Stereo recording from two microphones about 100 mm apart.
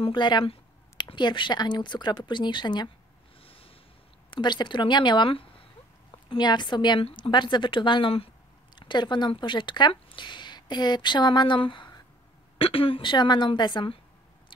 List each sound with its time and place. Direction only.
0.0 s speech: 50° left (ahead or behind)
3.4 s snort: 70° left (ahead or behind)
4.3 s speech: 50° left (ahead or behind)
6.2 s speech: 50° left (ahead or behind)
8.7 s speech: 50° left (ahead or behind)
12.5 s speech: 70° left (ahead or behind); by 13.9 s 50° left (ahead or behind)